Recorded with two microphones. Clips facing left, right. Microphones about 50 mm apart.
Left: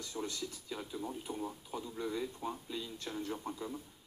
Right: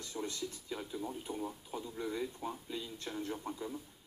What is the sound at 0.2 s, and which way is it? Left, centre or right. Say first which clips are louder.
Speech: right 1 dB; centre.